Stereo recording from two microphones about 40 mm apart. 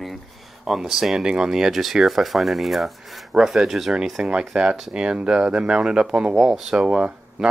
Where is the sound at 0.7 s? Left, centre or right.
Centre.